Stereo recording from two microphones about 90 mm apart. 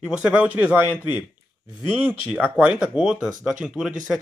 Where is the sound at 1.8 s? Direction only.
20° right (ahead or behind).